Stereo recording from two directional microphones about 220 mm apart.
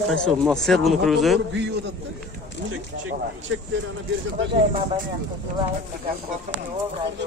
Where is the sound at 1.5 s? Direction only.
55° right (ahead or behind).